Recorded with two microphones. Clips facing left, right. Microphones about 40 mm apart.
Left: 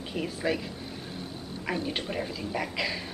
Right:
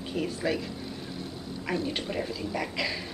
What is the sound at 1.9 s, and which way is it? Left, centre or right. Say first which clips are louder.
A woman's voice: even; centre.